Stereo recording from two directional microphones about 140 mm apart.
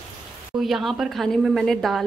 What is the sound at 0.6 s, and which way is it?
A woman's voice, centre (ahead or behind).